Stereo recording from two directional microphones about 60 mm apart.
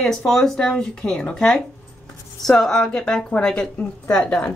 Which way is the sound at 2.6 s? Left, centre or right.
Centre.